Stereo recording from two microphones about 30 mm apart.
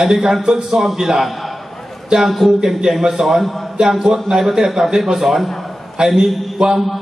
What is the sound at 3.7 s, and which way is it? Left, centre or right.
A man's voice, right.